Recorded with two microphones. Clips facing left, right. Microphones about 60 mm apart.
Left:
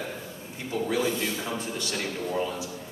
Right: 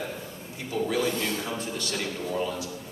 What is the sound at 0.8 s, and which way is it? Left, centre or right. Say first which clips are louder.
Speech: even; centre.